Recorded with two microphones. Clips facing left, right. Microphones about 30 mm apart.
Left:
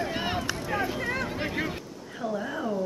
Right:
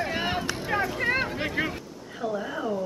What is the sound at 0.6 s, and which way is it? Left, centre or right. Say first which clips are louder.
Vehicle: right 5 dB; right.